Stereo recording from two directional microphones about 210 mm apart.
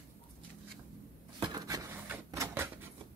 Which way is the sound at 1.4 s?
20° right (ahead or behind).